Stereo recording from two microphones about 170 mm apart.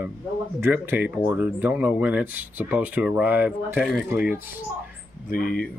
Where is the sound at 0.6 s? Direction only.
10° right (ahead or behind).